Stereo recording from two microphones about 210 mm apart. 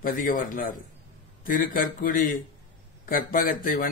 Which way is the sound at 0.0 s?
40° left (ahead or behind).